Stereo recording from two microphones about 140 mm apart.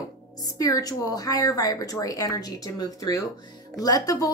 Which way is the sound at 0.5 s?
25° left (ahead or behind).